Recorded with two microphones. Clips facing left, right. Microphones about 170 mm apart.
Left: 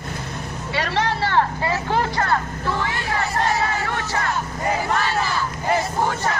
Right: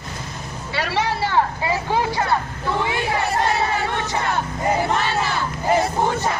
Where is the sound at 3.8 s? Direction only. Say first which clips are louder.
Right 1 dB; 20° right (ahead or behind).